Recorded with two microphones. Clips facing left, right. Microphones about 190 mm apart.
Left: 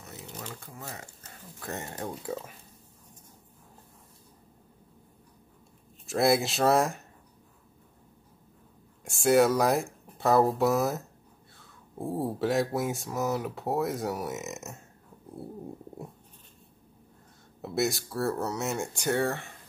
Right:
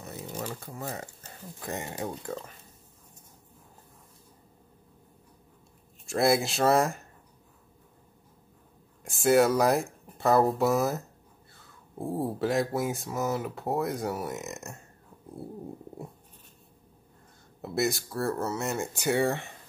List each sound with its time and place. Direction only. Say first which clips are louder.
0.3 s speech: right 6 dB; 40° right (ahead or behind)
1.6 s speech: right 2 dB; 15° right (ahead or behind)
2.2 s speech: left 1 dB; 5° left (ahead or behind)
6.0 s speech: even; centre (ahead or behind)
9.0 s speech: even; centre (ahead or behind)
17.6 s speech: even; centre (ahead or behind)
19.0 s speech: right 2 dB; 15° right (ahead or behind)